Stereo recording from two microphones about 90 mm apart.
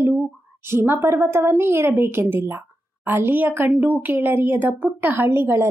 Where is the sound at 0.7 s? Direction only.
25° right (ahead or behind).